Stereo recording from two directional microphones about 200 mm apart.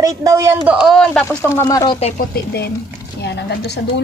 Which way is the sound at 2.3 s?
55° left (ahead or behind).